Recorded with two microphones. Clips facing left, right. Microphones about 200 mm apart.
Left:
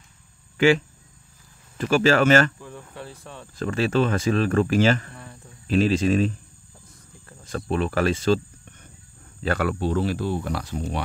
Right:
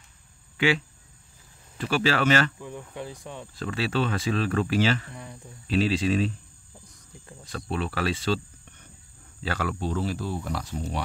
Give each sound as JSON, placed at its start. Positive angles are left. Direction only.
{"t": 0.6, "sound": "speech", "side_deg": 45}
{"t": 2.6, "sound": "speech", "side_deg": -15}
{"t": 3.5, "sound": "speech", "side_deg": 45}
{"t": 5.1, "sound": "speech", "side_deg": -15}
{"t": 5.7, "sound": "speech", "side_deg": 45}
{"t": 7.7, "sound": "speech", "side_deg": 45}
{"t": 9.4, "sound": "speech", "side_deg": 55}